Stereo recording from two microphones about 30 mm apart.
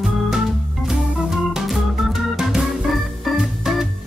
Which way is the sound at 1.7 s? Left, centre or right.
Centre.